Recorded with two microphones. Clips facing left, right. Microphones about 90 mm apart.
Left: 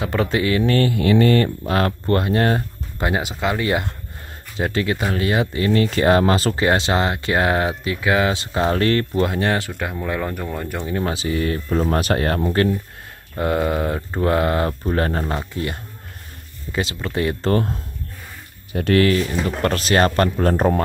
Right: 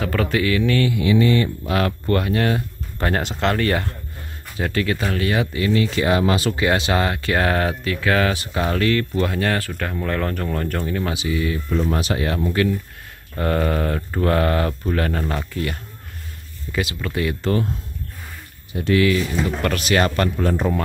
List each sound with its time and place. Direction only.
0.0 s speech: 25° left (ahead or behind); by 1.5 s 50° left (ahead or behind)
1.7 s speech: 35° left (ahead or behind)
3.0 s speech: 10° left (ahead or behind)
3.6 s speech: 15° left (ahead or behind)
10.9 s speech: 30° left (ahead or behind)
13.4 s speech: 15° left (ahead or behind); by 17.7 s 40° left (ahead or behind)
18.7 s speech: 55° left (ahead or behind)